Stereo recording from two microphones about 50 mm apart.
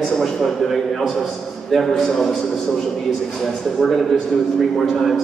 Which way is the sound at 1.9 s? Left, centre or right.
Centre.